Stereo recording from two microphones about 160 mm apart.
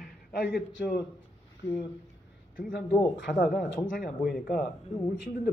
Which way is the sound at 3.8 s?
60° left (ahead or behind).